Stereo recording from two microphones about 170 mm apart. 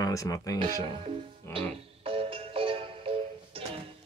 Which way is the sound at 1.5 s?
15° left (ahead or behind).